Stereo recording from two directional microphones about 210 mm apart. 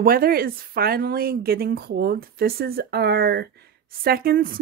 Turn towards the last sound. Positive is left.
turn(degrees=-45)  # may be behind; listen again after turning